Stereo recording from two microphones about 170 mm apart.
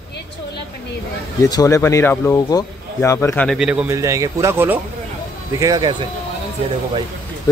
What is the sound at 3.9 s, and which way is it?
Speech, 20° right (ahead or behind).